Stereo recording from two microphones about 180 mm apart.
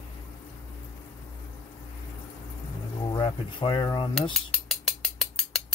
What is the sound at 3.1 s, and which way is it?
Speech, 25° left (ahead or behind).